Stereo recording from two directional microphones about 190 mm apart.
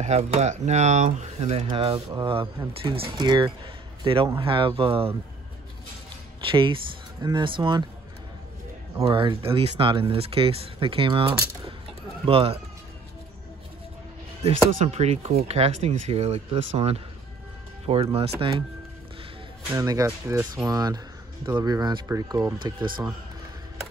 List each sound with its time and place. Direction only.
0.0 s speech: 35° right (ahead or behind)
6.5 s speech: 25° right (ahead or behind)
9.0 s speech: 25° right (ahead or behind)
14.4 s speech: 35° right (ahead or behind)
19.7 s speech: 20° right (ahead or behind)